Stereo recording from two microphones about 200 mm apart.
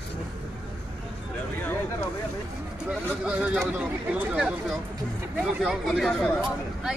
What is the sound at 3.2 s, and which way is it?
Speech, 5° right (ahead or behind).